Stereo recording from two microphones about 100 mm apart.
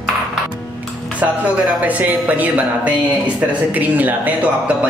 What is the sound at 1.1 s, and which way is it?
Speech, 15° right (ahead or behind).